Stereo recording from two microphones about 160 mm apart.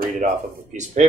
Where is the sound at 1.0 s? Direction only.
45° right (ahead or behind).